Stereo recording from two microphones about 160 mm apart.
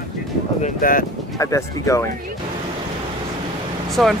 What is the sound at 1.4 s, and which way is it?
Speech, 20° left (ahead or behind).